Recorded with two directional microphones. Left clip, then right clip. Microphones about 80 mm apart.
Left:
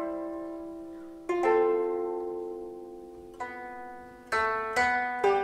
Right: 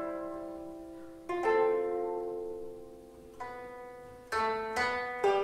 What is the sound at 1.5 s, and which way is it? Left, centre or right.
Music, centre.